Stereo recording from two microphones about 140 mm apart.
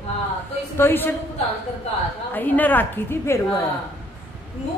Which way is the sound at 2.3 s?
15° left (ahead or behind).